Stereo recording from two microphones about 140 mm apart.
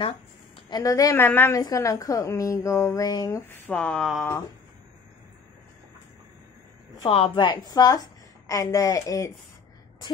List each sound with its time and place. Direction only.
0.7 s a woman's voice: 25° left (ahead or behind); by 4.0 s 10° left (ahead or behind)
4.0 s speech: centre (ahead or behind)
7.0 s a woman's voice: 35° left (ahead or behind)